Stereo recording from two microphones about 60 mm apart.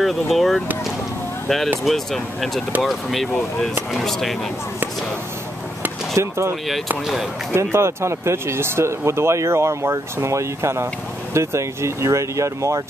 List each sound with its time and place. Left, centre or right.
0.0 s speech: centre
1.9 s speech: centre
6.1 s speech: right
7.5 s speech: right